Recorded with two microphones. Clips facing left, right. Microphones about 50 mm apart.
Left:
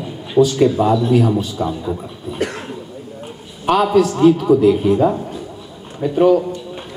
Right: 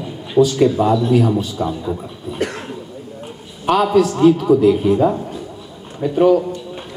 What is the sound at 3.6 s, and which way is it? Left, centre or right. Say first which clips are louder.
A man's voice: even; left.